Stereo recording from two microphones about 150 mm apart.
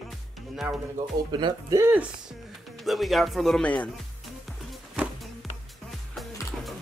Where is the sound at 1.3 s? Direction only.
25° right (ahead or behind).